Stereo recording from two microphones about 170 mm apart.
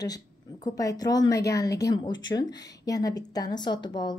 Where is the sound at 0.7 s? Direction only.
20° left (ahead or behind).